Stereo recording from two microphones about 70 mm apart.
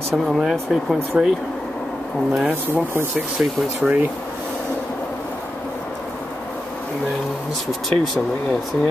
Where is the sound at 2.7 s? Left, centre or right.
Right.